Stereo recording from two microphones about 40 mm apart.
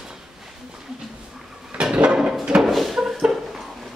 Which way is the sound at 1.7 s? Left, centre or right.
Right.